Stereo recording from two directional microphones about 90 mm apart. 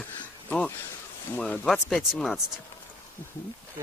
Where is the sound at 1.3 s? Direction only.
15° left (ahead or behind).